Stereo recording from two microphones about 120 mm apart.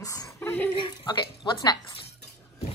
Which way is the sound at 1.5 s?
35° left (ahead or behind).